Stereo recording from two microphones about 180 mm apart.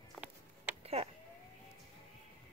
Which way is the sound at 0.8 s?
35° right (ahead or behind).